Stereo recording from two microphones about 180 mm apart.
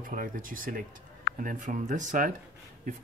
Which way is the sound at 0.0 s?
50° right (ahead or behind).